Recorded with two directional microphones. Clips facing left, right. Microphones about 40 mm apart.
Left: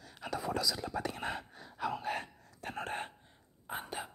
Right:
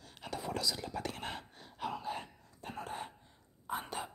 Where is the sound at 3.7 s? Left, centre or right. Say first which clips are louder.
Right 1 dB; centre.